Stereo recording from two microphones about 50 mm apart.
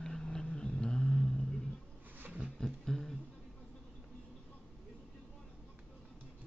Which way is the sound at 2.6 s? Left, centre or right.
Centre.